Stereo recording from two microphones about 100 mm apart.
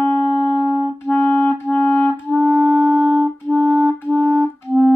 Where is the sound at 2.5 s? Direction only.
15° right (ahead or behind).